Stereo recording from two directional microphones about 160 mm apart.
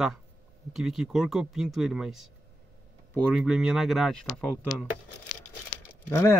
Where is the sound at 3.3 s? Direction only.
5° right (ahead or behind).